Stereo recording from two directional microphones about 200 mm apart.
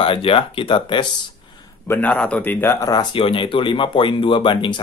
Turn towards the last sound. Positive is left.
turn(degrees=25)  # may be behind; listen again after turning